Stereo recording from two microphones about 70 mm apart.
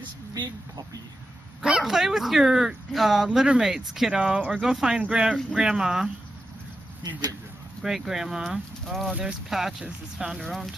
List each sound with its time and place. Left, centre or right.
1.6 s speech: centre
7.0 s speech: right
7.8 s speech: centre